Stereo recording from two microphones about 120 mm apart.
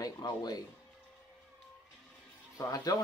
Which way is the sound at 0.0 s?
35° left (ahead or behind).